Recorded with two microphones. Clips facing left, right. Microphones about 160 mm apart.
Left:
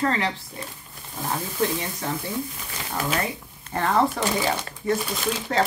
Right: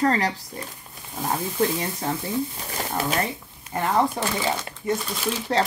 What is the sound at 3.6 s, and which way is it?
Speech, 10° right (ahead or behind).